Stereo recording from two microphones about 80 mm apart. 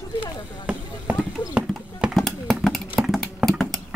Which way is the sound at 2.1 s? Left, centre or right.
Centre.